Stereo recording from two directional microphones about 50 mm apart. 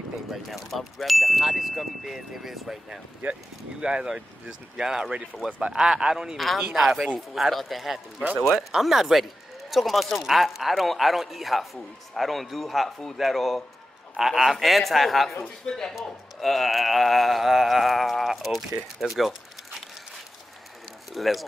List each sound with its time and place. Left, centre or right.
0.7 s speech: centre
3.8 s speech: centre
6.3 s speech: centre
6.6 s speech: centre
15.6 s speech: centre
15.9 s speech: centre
21.1 s speech: centre